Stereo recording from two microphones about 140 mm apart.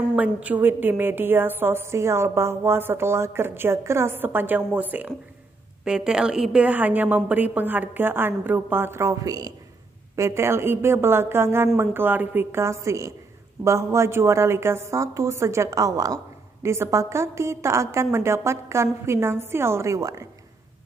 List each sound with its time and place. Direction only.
0.1 s a woman's voice: 10° right (ahead or behind)